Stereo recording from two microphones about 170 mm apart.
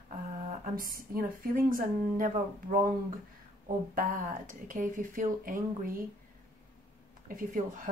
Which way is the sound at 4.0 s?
50° right (ahead or behind).